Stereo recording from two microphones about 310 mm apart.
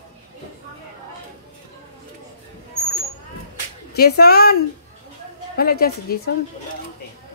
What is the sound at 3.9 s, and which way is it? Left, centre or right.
A woman's voice, left.